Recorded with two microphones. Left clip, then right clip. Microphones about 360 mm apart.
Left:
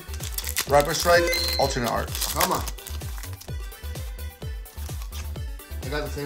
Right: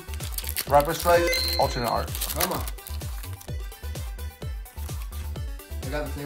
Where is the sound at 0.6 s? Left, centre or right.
Centre.